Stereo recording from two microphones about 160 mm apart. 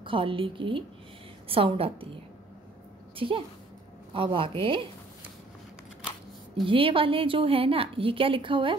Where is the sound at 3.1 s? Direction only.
35° right (ahead or behind).